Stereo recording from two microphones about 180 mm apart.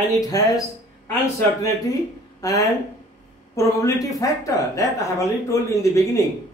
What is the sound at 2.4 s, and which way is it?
Speech, 20° left (ahead or behind).